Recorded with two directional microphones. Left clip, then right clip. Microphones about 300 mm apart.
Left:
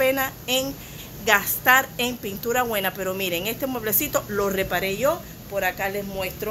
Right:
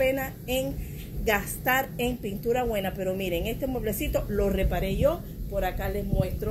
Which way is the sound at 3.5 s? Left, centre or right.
Centre.